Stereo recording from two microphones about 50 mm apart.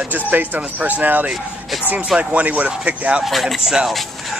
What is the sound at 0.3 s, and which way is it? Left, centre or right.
Speech, right.